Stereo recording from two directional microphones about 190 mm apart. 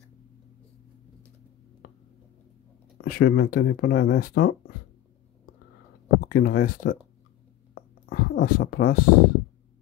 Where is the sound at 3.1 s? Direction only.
50° left (ahead or behind).